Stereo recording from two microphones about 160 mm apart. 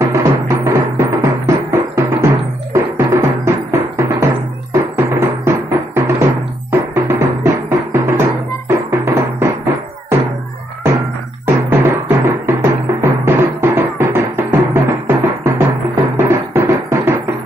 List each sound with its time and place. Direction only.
0.1 s music: 15° right (ahead or behind)
11.4 s music: 15° right (ahead or behind)